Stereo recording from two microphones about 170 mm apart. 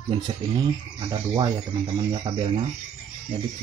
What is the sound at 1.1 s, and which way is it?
Speech, 25° right (ahead or behind).